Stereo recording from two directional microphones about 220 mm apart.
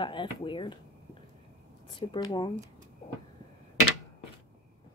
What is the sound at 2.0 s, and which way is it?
Speech, 20° left (ahead or behind).